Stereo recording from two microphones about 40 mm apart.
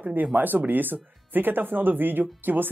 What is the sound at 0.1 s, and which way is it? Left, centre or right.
Speech, right.